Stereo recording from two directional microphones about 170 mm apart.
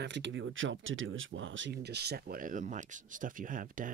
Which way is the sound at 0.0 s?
90° right.